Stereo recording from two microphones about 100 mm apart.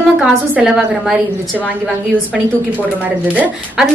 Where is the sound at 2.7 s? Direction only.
15° right (ahead or behind).